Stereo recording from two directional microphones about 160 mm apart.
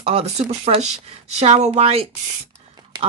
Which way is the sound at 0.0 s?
40° right (ahead or behind).